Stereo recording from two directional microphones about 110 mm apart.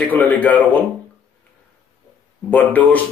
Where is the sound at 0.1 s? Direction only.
15° left (ahead or behind).